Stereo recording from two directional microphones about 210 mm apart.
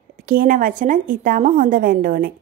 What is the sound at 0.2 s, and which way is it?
A woman's voice, 40° right (ahead or behind).